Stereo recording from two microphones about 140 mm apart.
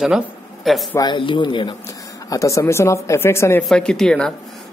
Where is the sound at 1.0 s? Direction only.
35° left (ahead or behind).